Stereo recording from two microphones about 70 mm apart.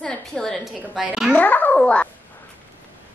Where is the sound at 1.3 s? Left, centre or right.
Left.